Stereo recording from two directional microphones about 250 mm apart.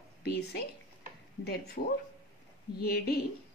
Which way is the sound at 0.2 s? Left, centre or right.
Left.